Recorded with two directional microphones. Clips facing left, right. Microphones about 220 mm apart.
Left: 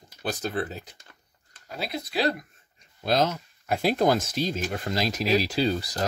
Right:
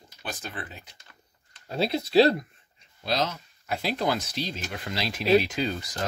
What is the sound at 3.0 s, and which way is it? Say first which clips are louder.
Speech: left 4 dB; 50° left (ahead or behind).